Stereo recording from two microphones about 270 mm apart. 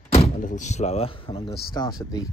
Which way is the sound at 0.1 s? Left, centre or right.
Left.